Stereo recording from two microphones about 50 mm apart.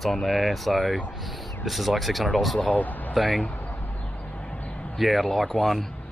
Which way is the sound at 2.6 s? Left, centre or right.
Left.